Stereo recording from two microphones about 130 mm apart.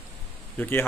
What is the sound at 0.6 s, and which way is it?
Speech, 15° left (ahead or behind).